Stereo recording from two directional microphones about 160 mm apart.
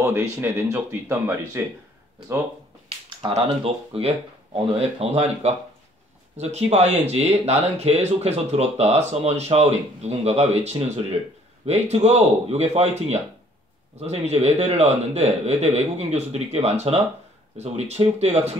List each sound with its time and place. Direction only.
0.0 s speech: 15° right (ahead or behind)
3.4 s speech: 35° right (ahead or behind)